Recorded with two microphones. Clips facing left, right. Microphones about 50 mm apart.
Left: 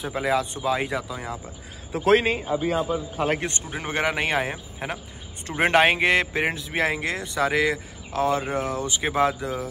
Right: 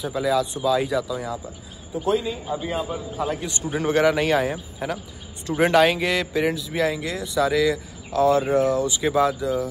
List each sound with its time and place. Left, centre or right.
0.0 s speech: left
1.9 s a man's voice: left
3.8 s a man's voice: left